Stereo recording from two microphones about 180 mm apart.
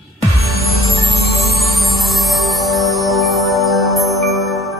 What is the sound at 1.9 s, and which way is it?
Music, centre (ahead or behind).